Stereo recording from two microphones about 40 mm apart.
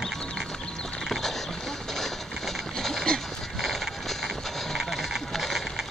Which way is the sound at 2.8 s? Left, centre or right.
Centre.